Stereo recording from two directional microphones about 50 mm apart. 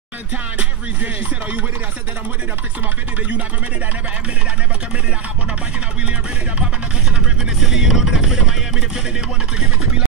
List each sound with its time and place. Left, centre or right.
0.6 s music: right
7.6 s music: centre